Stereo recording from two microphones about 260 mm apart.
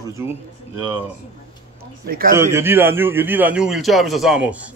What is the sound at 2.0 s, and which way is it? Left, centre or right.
Speech, right.